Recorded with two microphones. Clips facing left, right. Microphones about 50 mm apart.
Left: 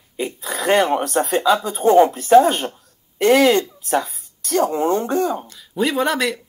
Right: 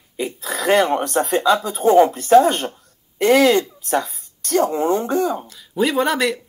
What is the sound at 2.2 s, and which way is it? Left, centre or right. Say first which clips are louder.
Speech: even; centre.